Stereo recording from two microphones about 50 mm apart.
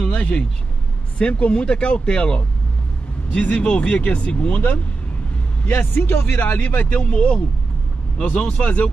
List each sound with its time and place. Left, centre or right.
0.1 s speech: left
5.7 s speech: left
6.3 s speech: left